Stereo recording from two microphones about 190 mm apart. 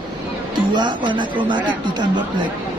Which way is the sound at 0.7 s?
25° right (ahead or behind).